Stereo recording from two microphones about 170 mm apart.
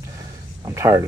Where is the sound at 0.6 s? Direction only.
20° right (ahead or behind).